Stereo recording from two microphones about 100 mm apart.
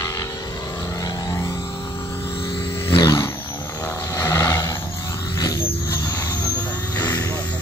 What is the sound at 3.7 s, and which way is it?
Vehicle, 35° left (ahead or behind).